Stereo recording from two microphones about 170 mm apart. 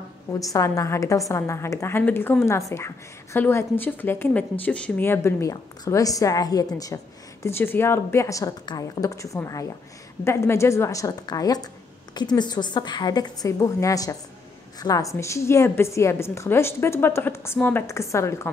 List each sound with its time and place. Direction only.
0.3 s a woman's voice: 20° left (ahead or behind)